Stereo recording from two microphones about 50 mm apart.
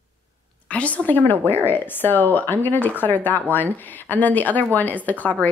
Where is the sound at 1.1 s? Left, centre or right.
Left.